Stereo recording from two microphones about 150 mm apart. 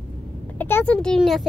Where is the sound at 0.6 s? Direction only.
15° left (ahead or behind).